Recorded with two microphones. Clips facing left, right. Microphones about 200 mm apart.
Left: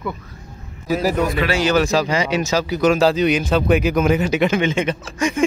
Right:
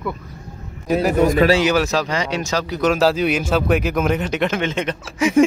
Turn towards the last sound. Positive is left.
turn(degrees=5)  # may be behind; listen again after turning